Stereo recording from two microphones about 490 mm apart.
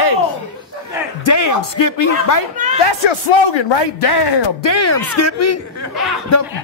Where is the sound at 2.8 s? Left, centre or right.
Left.